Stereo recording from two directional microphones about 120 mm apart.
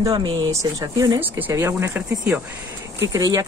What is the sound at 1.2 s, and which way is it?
Speech, 15° right (ahead or behind).